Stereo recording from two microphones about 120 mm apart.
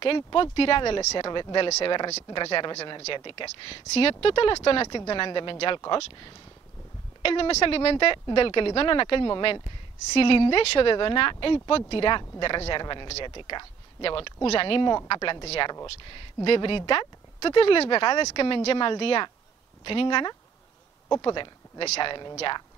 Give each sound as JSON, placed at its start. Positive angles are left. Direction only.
{"t": 0.0, "sound": "speech", "side_deg": 45}
{"t": 3.6, "sound": "speech", "side_deg": 50}
{"t": 7.2, "sound": "speech", "side_deg": 50}
{"t": 15.1, "sound": "speech", "side_deg": 35}
{"t": 16.4, "sound": "speech", "side_deg": 50}
{"t": 21.8, "sound": "speech", "side_deg": 60}